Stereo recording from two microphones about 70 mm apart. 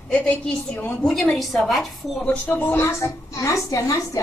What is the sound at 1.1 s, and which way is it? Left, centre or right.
A woman's voice, centre.